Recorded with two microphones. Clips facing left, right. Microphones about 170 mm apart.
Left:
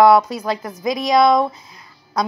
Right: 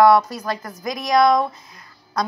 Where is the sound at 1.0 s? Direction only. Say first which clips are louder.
Left 2 dB; 25° left (ahead or behind).